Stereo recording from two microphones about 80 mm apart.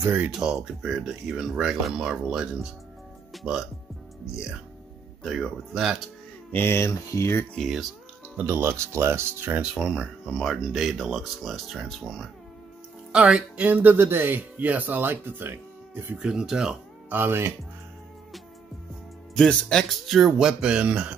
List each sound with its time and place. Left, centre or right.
0.0 s speech: right
0.3 s speech: centre
5.2 s speech: centre
6.5 s speech: left
7.5 s speech: centre
8.5 s speech: right
10.2 s speech: centre
13.1 s speech: centre; by 16.2 s right
16.2 s speech: centre
17.1 s speech: right
19.3 s speech: centre